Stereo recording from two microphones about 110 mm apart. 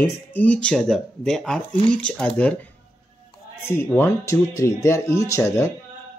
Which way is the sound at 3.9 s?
25° left (ahead or behind).